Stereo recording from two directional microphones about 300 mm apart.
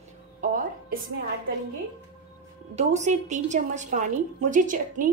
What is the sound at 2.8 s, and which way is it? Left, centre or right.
A woman's voice, right.